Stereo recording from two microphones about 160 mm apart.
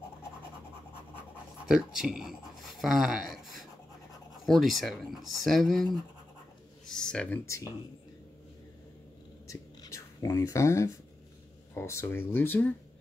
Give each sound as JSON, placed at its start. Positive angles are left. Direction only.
{"t": 1.7, "sound": "speech", "side_deg": -5}
{"t": 6.9, "sound": "speech", "side_deg": 5}
{"t": 9.5, "sound": "whispering", "side_deg": 20}
{"t": 11.7, "sound": "speech", "side_deg": 15}